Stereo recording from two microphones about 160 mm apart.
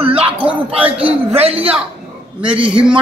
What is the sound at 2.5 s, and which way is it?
Speech, 10° right (ahead or behind).